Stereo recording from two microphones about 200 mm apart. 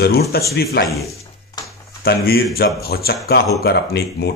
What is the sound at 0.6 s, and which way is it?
Speech, 50° left (ahead or behind).